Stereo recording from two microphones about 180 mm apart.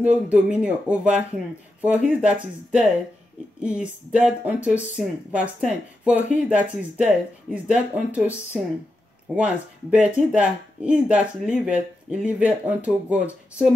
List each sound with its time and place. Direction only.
0.0 s speech: 5° right (ahead or behind)